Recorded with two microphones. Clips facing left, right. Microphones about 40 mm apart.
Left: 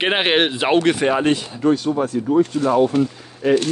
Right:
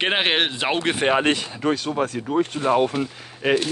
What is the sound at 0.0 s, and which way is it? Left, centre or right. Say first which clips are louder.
Speech: left 3 dB; centre.